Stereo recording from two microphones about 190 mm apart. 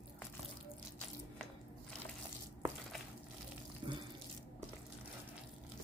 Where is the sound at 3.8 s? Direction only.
25° right (ahead or behind).